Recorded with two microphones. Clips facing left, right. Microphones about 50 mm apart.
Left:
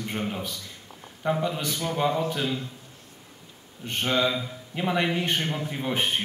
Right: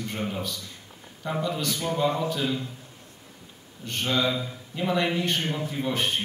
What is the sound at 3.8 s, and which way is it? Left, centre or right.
A man's voice, left.